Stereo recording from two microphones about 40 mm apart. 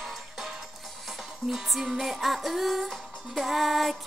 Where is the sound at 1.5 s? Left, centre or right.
Centre.